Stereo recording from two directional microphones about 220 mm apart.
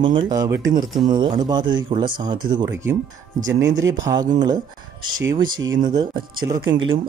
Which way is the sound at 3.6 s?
60° right (ahead or behind).